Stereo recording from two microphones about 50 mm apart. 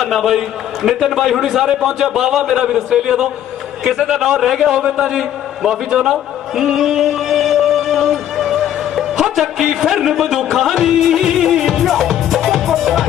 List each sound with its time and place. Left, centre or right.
0.0 s a man's voice: centre
5.9 s music: centre